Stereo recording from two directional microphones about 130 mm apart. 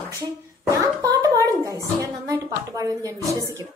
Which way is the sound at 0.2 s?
25° right (ahead or behind).